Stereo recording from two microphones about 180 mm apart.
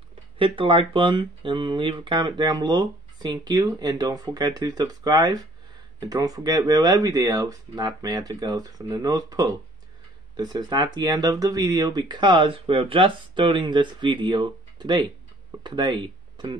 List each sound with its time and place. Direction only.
0.4 s speech: 30° right (ahead or behind)